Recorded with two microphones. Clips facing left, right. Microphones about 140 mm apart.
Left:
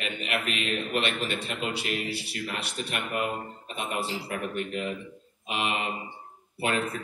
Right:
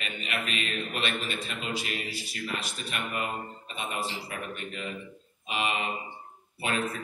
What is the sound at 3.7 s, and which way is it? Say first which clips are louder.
Speech: left 3 dB; 65° left (ahead or behind).